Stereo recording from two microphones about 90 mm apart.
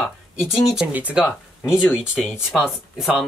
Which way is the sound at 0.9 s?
15° right (ahead or behind).